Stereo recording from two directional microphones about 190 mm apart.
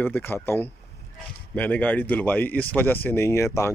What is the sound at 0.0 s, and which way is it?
Speech, 10° left (ahead or behind).